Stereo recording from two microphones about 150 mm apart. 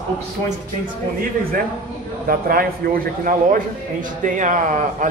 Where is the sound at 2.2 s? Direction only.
75° right (ahead or behind).